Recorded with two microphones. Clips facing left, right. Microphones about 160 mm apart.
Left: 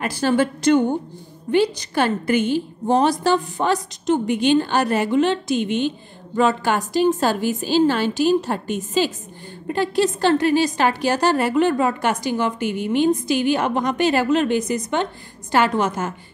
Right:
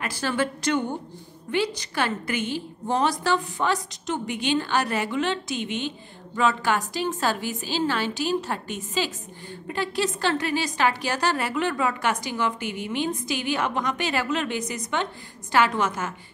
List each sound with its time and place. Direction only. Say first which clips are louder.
0.0 s a woman's voice: left 7 dB; 35° left (ahead or behind)
1.8 s a woman's voice: left 6 dB; 45° left (ahead or behind)